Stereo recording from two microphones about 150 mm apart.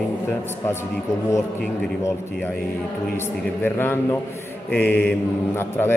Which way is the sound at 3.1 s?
15° left (ahead or behind).